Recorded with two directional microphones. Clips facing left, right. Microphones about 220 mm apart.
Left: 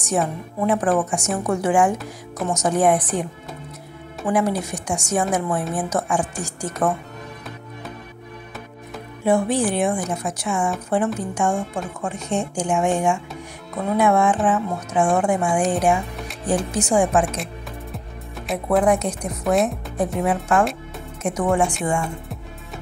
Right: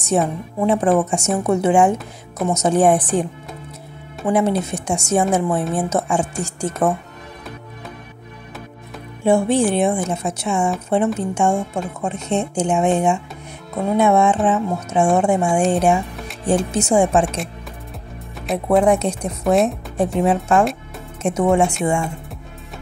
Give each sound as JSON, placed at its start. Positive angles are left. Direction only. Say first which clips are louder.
{"t": 0.7, "sound": "speech", "louder": "right 3 dB", "side_deg": -25}
{"t": 4.3, "sound": "speech", "louder": "right 3 dB", "side_deg": -25}
{"t": 9.2, "sound": "speech", "louder": "right 3 dB", "side_deg": -25}
{"t": 17.9, "sound": "music", "louder": "even", "side_deg": 0}
{"t": 18.8, "sound": "speech", "louder": "right 2 dB", "side_deg": -25}